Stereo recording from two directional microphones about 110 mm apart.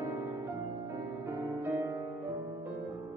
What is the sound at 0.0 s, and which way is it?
Music, 25° right (ahead or behind).